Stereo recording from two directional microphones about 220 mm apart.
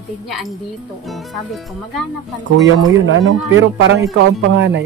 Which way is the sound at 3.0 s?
60° right (ahead or behind).